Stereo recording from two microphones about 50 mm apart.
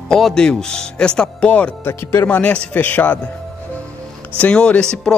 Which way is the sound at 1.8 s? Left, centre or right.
Left.